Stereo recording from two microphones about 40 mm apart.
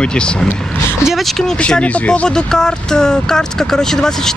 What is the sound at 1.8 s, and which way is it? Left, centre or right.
Speech, left.